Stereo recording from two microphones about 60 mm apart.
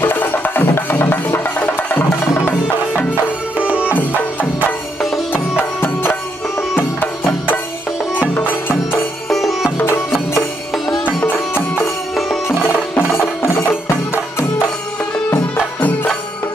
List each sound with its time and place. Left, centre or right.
0.0 s music: left
3.5 s music: centre
3.9 s music: left
5.6 s music: left
8.4 s music: left
9.3 s music: centre
11.5 s music: left
13.1 s music: left
15.5 s music: left